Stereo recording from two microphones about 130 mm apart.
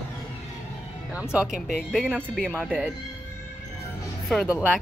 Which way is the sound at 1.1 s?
5° right (ahead or behind).